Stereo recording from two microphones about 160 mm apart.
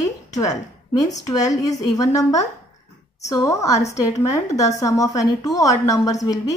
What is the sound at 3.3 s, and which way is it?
A woman's voice, 20° left (ahead or behind).